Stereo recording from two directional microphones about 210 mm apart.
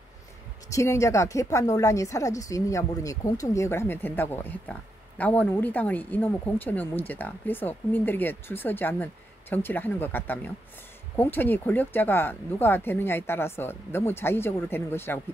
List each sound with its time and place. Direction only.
0.7 s a woman's voice: 15° left (ahead or behind)